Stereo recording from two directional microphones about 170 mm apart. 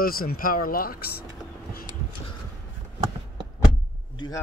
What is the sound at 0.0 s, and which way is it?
Speech, 60° left (ahead or behind).